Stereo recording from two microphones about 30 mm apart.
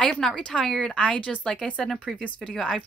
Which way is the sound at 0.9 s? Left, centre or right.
Left.